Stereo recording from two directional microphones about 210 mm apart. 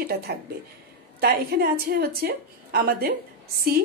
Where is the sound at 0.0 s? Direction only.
45° right (ahead or behind).